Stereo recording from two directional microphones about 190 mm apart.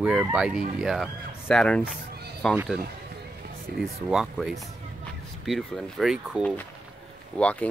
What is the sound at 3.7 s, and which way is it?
Speech, 55° right (ahead or behind).